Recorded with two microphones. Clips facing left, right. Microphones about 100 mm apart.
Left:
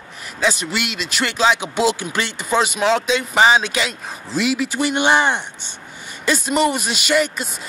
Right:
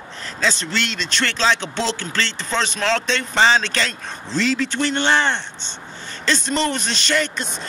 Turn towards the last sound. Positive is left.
turn(degrees=10)  # may be behind; listen again after turning